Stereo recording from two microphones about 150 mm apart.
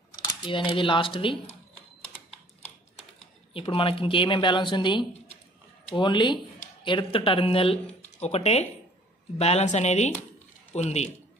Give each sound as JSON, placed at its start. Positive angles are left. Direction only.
{"t": 0.2, "sound": "speech", "side_deg": 35}
{"t": 3.5, "sound": "a woman's voice", "side_deg": 35}